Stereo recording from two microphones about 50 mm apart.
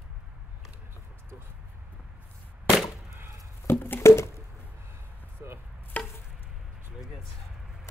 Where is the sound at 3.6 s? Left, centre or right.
Left.